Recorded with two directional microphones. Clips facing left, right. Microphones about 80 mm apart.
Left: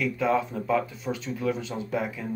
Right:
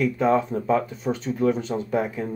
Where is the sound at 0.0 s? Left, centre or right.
Right.